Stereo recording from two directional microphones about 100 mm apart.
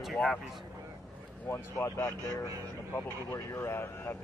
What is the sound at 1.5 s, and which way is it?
Speech, 25° left (ahead or behind).